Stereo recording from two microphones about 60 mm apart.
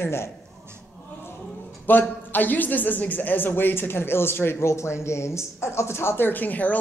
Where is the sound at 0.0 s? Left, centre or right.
Left.